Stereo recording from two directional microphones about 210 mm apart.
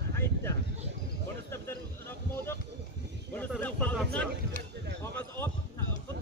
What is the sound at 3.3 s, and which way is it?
Speech, 5° left (ahead or behind).